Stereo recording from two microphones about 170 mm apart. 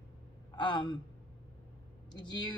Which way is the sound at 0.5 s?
30° left (ahead or behind).